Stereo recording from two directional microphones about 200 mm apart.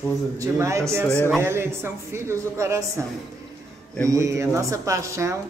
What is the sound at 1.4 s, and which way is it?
Speech, 10° right (ahead or behind).